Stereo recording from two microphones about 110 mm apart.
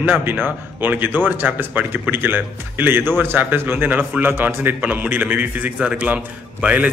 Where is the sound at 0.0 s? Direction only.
20° right (ahead or behind).